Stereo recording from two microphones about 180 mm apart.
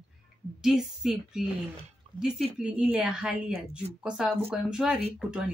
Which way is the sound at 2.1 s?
35° right (ahead or behind).